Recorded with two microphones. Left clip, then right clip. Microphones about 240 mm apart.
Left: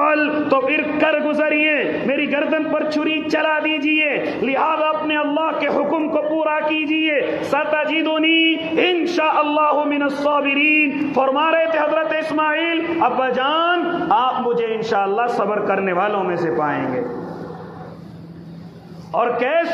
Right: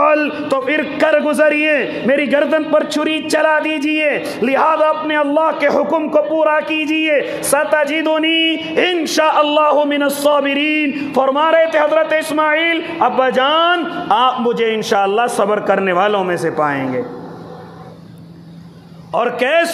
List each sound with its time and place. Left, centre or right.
0.0 s a man's voice: right
19.1 s a man's voice: right